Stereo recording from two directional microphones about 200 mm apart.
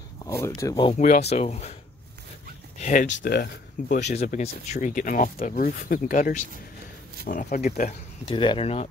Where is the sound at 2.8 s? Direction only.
40° left (ahead or behind).